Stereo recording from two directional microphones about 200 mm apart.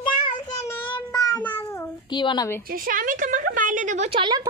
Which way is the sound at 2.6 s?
45° right (ahead or behind).